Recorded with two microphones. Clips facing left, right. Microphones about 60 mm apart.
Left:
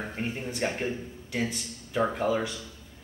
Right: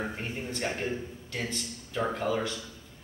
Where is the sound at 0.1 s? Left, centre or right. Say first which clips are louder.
Left 2 dB; centre.